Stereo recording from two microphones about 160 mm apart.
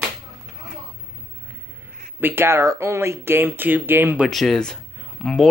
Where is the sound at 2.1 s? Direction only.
15° right (ahead or behind).